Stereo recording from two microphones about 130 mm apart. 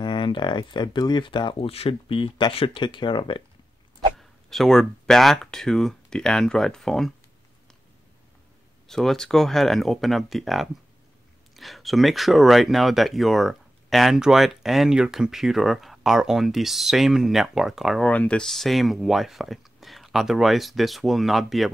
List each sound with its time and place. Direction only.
0.0 s speech: 35° left (ahead or behind)
4.2 s speech: centre (ahead or behind)
8.8 s speech: 5° left (ahead or behind)
18.1 s speech: 10° left (ahead or behind)